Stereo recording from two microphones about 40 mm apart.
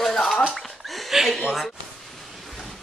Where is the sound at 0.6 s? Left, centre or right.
Centre.